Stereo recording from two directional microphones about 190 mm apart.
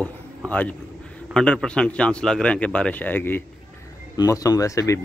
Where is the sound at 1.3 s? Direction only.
5° left (ahead or behind).